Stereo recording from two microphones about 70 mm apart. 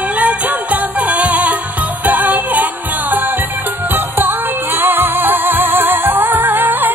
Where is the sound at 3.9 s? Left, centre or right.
Right.